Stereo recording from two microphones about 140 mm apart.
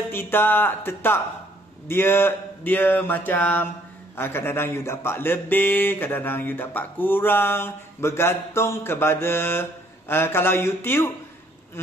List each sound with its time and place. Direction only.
0.1 s speech: 15° left (ahead or behind)